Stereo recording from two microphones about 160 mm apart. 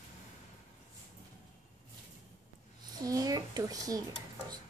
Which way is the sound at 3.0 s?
20° right (ahead or behind).